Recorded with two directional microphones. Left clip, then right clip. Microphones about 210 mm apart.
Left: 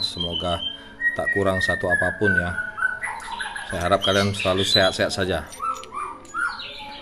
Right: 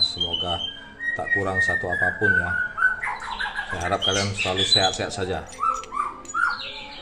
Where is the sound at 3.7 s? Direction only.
45° left (ahead or behind).